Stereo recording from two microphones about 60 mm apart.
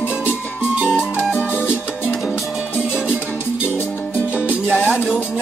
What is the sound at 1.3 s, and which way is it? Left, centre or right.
Music, centre.